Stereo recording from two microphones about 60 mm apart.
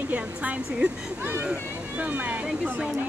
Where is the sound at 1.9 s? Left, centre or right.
Right.